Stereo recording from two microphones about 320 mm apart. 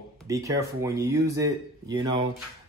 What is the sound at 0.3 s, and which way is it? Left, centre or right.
Speech, centre.